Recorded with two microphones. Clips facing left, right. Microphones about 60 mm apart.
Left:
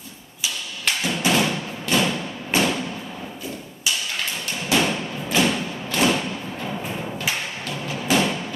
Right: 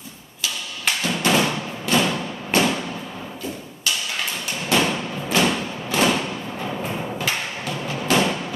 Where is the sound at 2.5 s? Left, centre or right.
Centre.